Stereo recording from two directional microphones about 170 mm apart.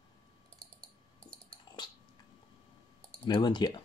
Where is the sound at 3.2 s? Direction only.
25° left (ahead or behind).